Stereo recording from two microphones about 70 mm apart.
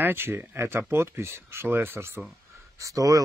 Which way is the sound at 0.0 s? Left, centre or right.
Right.